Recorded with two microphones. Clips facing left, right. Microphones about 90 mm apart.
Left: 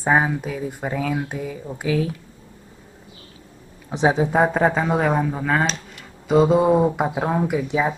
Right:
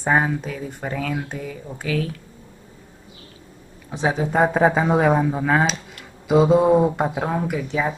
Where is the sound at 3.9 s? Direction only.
20° left (ahead or behind).